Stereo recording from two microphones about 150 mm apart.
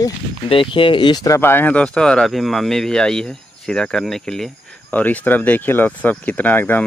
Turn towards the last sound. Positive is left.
turn(degrees=10)  # may be behind; listen again after turning